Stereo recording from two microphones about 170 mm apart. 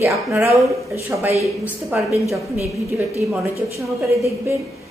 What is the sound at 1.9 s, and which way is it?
Speech, 10° right (ahead or behind).